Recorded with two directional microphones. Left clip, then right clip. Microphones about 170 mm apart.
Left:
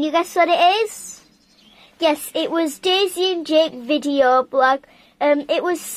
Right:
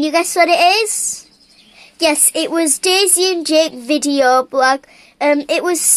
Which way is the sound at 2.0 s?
5° right (ahead or behind).